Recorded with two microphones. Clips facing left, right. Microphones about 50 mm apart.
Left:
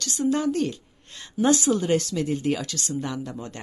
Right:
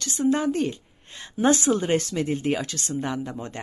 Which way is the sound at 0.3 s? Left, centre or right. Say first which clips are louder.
Right 1 dB; right.